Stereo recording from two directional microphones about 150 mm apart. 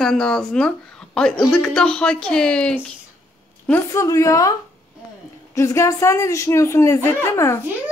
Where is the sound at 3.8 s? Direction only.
20° left (ahead or behind).